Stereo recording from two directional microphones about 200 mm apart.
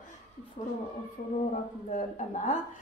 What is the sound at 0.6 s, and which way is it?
Speech, 40° left (ahead or behind).